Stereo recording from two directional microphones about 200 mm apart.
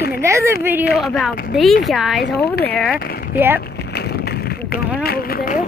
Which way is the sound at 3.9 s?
55° left (ahead or behind).